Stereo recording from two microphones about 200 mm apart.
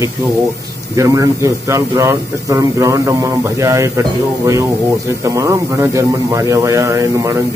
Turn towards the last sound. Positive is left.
turn(degrees=-15)  # may be behind; listen again after turning